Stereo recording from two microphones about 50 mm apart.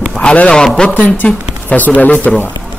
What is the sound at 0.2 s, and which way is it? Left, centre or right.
Speech, left.